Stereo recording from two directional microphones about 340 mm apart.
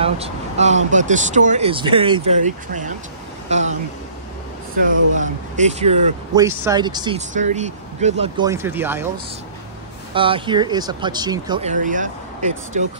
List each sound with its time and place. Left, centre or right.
0.0 s speech: centre
5.1 s speech: right
10.1 s speech: centre